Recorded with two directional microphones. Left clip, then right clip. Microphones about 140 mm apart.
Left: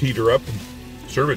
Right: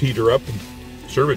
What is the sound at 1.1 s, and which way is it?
Music, 5° left (ahead or behind).